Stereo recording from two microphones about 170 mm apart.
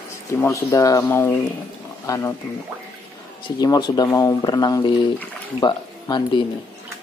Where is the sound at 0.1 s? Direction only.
15° left (ahead or behind).